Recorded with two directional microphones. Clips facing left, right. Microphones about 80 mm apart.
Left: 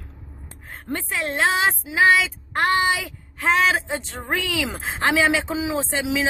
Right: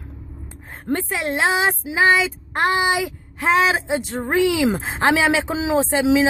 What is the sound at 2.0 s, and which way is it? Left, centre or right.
Female singing, centre.